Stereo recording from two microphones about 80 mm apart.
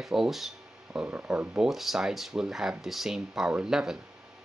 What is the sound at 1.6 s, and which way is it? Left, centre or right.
Speech, centre.